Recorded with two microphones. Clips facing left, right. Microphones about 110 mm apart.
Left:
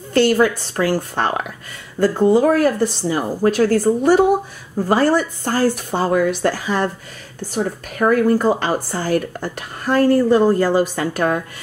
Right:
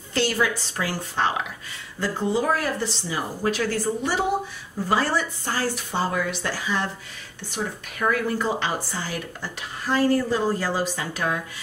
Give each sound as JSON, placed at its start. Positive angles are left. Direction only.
{"t": 0.1, "sound": "speech", "side_deg": 50}